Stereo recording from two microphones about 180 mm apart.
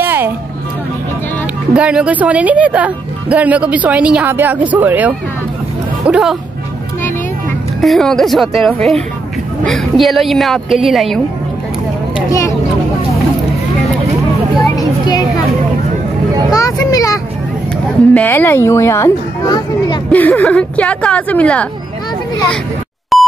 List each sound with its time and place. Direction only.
0.0 s music: 10° right (ahead or behind)
1.7 s a woman's voice: 5° right (ahead or behind)
7.8 s a woman's voice: centre (ahead or behind)
12.3 s speech: 15° left (ahead or behind)
14.8 s children playing: 20° left (ahead or behind)
16.5 s speech: 20° left (ahead or behind)
20.1 s speech: 10° left (ahead or behind)
23.1 s dial tone: centre (ahead or behind)